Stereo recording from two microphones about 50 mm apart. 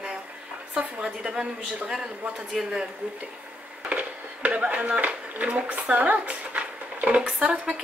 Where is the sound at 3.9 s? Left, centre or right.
Right.